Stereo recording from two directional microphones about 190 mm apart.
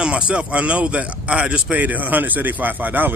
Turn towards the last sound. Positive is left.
turn(degrees=-10)  # may be behind; listen again after turning